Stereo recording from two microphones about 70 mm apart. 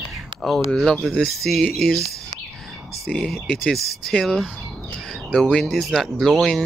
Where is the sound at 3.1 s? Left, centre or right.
Centre.